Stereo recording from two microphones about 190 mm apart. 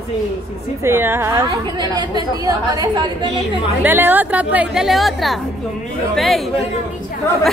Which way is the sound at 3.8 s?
10° right (ahead or behind).